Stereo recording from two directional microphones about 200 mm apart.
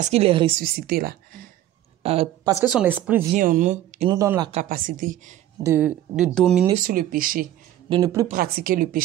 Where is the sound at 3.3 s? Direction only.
40° right (ahead or behind).